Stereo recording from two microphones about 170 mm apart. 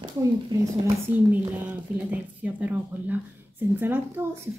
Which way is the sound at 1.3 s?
10° right (ahead or behind).